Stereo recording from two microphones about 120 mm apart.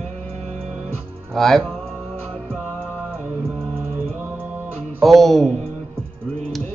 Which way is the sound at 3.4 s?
20° right (ahead or behind).